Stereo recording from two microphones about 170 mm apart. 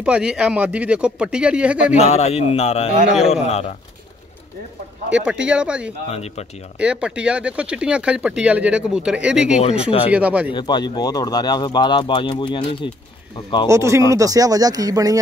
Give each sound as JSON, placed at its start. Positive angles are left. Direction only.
{"t": 0.0, "sound": "speech", "side_deg": -5}
{"t": 2.0, "sound": "speech", "side_deg": 40}
{"t": 5.1, "sound": "speech", "side_deg": -5}
{"t": 6.0, "sound": "speech", "side_deg": 40}
{"t": 6.8, "sound": "speech", "side_deg": -5}
{"t": 9.6, "sound": "speech", "side_deg": 40}
{"t": 10.1, "sound": "speech", "side_deg": -5}
{"t": 10.5, "sound": "speech", "side_deg": 25}
{"t": 13.7, "sound": "speech", "side_deg": -15}